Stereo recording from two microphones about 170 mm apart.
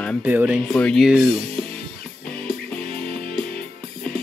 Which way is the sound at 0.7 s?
5° left (ahead or behind).